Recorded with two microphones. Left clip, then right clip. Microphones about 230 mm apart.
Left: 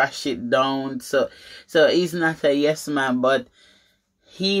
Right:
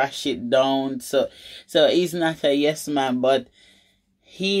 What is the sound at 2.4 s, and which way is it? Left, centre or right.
Speech, centre.